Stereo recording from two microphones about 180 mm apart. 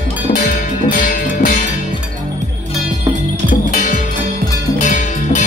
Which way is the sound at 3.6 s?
45° left (ahead or behind).